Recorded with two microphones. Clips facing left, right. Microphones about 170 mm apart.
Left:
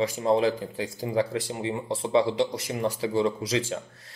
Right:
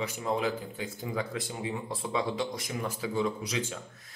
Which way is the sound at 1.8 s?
30° left (ahead or behind).